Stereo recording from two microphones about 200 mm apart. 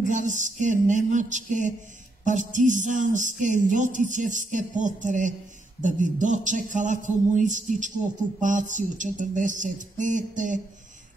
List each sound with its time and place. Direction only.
0.1 s speech: 40° right (ahead or behind)